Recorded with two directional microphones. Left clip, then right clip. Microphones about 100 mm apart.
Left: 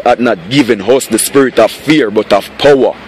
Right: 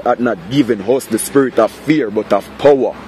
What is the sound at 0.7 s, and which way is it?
Speech, 20° left (ahead or behind).